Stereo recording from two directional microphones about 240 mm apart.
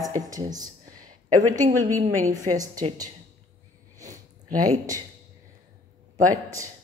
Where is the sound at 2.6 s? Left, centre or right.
Centre.